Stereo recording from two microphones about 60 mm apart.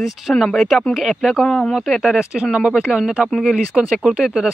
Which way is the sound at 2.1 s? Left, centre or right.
Centre.